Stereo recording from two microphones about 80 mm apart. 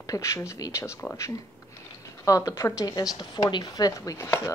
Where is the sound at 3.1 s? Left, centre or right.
Left.